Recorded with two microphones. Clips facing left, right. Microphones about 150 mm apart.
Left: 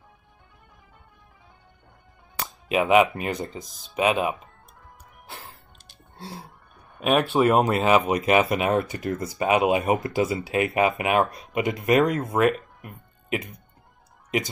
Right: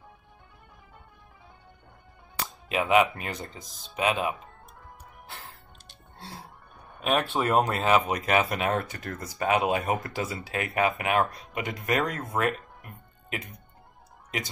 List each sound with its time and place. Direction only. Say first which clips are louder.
2.4 s speech: left 5 dB; 15° left (ahead or behind)
7.0 s speech: left 6 dB; 15° left (ahead or behind)